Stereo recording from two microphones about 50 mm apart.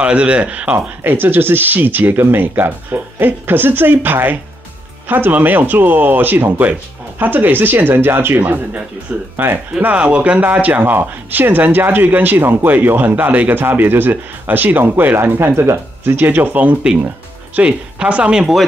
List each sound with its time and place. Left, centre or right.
0.0 s speech: right
0.7 s speech: right
16.2 s speech: right
17.6 s speech: right